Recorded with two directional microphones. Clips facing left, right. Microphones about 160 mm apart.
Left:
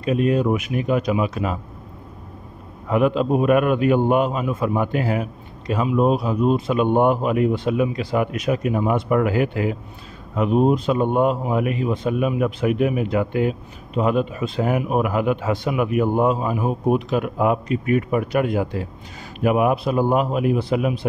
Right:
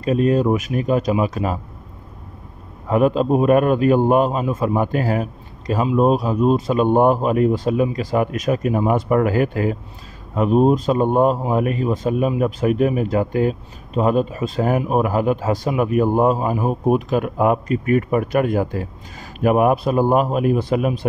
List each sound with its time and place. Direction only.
0.0 s speech: 40° right (ahead or behind)
2.9 s a man's voice: 40° right (ahead or behind)